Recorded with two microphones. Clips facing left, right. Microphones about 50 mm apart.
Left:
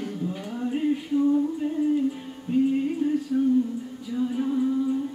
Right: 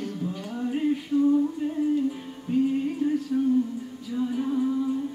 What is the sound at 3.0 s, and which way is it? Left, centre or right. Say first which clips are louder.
Music: right 1 dB; centre.